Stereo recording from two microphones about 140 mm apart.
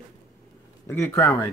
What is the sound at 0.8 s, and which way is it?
Speech, 20° left (ahead or behind).